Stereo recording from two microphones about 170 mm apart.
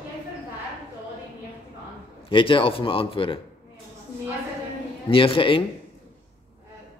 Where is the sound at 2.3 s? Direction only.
30° left (ahead or behind).